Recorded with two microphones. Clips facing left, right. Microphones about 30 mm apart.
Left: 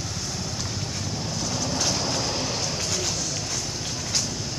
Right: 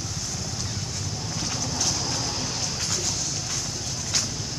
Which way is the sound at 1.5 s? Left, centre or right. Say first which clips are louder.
Left 3 dB; centre.